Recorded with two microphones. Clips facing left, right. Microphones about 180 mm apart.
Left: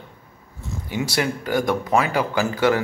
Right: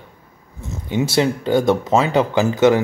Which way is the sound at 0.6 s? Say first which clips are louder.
Right 5 dB; 20° right (ahead or behind).